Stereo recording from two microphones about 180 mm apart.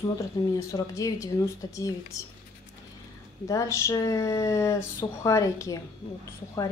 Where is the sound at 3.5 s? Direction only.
15° left (ahead or behind).